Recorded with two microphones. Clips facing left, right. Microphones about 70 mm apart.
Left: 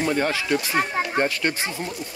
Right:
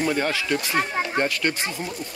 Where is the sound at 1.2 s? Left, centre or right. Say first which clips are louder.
Left 1 dB; left.